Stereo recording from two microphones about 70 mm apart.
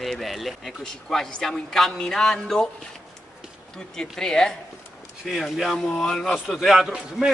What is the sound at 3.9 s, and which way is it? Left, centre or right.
A man's voice, centre.